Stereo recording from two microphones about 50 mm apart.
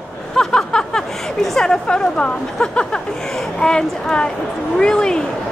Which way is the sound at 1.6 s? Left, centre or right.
Centre.